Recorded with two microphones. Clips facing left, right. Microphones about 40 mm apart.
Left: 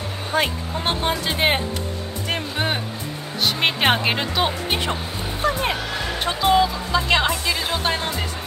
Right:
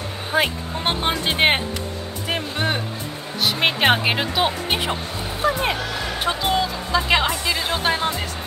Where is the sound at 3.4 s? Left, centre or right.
Centre.